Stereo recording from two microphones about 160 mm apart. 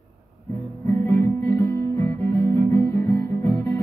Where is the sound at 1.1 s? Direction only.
15° left (ahead or behind).